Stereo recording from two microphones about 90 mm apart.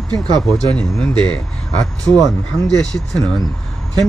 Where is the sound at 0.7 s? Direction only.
10° left (ahead or behind).